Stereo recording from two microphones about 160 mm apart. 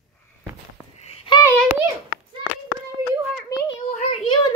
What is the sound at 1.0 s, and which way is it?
Babbling, 35° left (ahead or behind).